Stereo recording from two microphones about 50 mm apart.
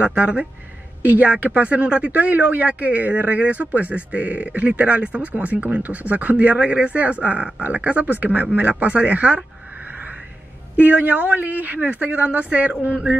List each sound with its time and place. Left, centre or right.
0.0 s speech: right
10.8 s a woman's voice: right